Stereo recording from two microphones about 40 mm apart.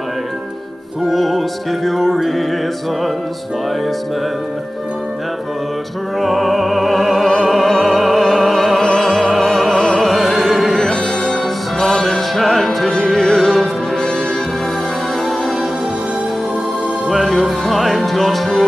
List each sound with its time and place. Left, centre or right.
1.0 s music: centre
6.1 s music: centre
17.1 s music: centre